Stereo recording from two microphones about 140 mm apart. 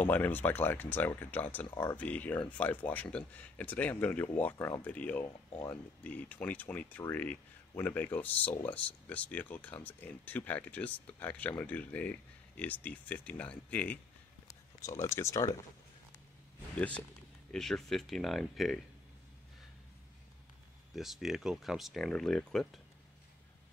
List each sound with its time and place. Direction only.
0.0 s speech: 15° left (ahead or behind)
14.5 s speech: 25° left (ahead or behind)
16.7 s speech: 10° left (ahead or behind)
20.9 s speech: centre (ahead or behind)